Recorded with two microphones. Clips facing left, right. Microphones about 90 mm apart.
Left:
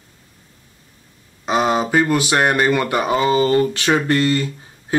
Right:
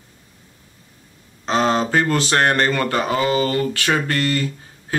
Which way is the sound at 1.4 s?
10° left (ahead or behind).